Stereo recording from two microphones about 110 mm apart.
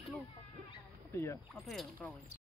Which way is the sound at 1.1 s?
25° left (ahead or behind).